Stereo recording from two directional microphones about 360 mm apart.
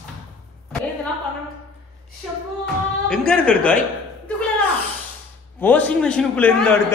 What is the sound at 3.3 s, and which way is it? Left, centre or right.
Speech, centre.